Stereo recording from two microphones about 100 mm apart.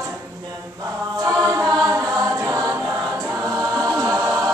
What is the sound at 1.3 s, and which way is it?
A capella, 35° right (ahead or behind).